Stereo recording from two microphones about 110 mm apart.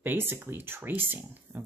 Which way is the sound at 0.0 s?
20° right (ahead or behind).